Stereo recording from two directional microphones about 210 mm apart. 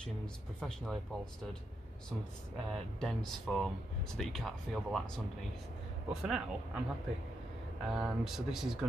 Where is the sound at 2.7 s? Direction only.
Centre (ahead or behind).